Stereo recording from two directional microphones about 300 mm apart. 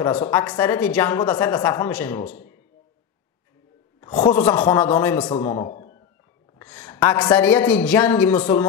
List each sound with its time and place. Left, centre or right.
0.0 s a woman's voice: left
4.0 s a woman's voice: centre